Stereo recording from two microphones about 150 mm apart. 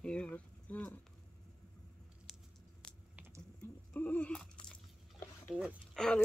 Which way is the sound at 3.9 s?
10° left (ahead or behind).